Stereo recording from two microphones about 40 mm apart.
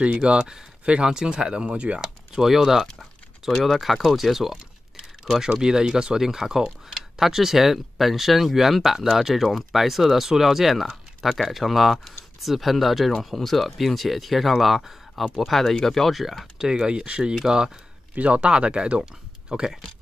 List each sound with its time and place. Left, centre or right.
0.2 s speech: right
2.0 s speech: centre
5.5 s speech: centre
16.5 s speech: centre
18.1 s speech: right